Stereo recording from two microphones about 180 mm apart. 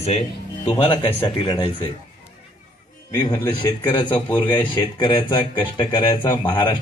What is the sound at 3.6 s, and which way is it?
Speech, 25° left (ahead or behind).